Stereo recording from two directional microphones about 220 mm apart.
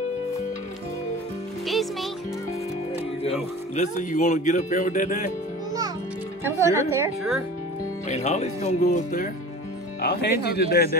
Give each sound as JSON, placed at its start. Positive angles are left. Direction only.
{"t": 1.7, "sound": "music", "side_deg": 0}
{"t": 3.7, "sound": "speech", "side_deg": 35}
{"t": 6.4, "sound": "speech", "side_deg": -10}
{"t": 8.1, "sound": "speech", "side_deg": 30}
{"t": 10.0, "sound": "a man's voice", "side_deg": 45}